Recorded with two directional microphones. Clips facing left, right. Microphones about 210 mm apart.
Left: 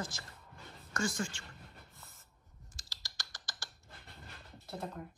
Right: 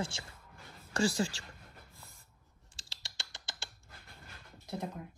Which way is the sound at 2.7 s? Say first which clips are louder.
Right 2 dB; 25° right (ahead or behind).